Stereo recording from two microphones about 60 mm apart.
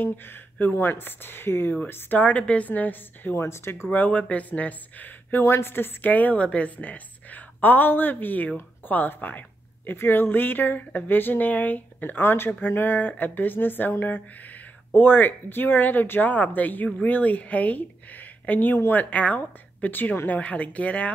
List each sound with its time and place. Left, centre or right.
0.0 s speech: left
2.1 s speech: left
3.3 s speech: left
3.9 s speech: left
5.5 s speech: left